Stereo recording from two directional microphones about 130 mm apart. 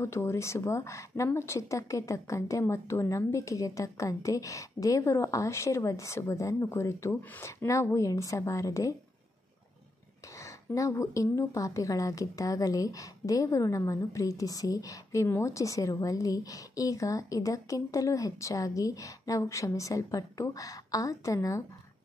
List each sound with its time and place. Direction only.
0.0 s a woman's voice: 20° left (ahead or behind)
10.4 s a woman's voice: 25° left (ahead or behind)